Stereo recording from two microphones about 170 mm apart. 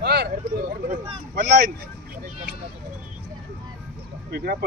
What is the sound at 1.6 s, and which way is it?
Speech, 50° right (ahead or behind).